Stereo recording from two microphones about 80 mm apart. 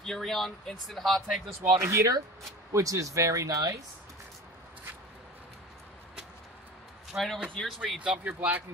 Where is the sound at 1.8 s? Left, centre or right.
Right.